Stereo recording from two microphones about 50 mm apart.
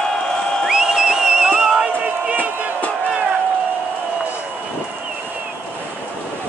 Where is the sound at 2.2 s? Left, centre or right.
Right.